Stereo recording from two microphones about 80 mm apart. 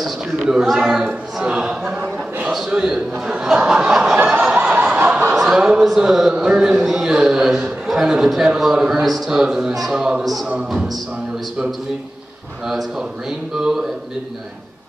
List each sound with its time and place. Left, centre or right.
0.4 s a sound: centre
2.0 s a sound: centre
2.5 s a man's voice: centre
4.3 s snicker: centre
4.6 s snicker: right
5.3 s a man's voice: centre
12.6 s a man's voice: centre